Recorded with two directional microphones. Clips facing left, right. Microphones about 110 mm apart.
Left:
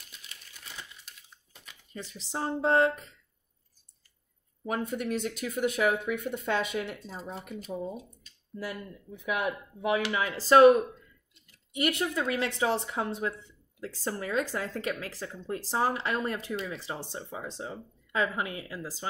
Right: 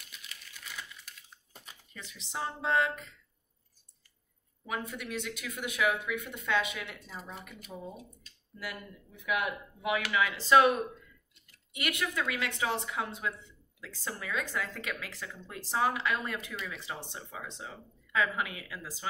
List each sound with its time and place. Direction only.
0.1 s typewriter: 30° left (ahead or behind)
2.0 s speech: 35° left (ahead or behind)
4.6 s speech: 40° left (ahead or behind)
9.1 s speech: 35° left (ahead or behind)
11.7 s speech: 35° left (ahead or behind)